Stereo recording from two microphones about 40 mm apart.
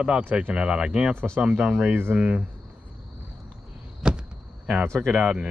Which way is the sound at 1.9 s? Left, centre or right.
Right.